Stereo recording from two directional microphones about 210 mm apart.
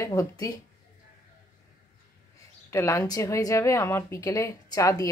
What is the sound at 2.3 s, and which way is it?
A woman's voice, 15° left (ahead or behind).